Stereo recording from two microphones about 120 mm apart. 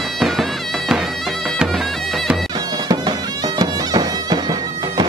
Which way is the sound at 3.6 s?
35° right (ahead or behind).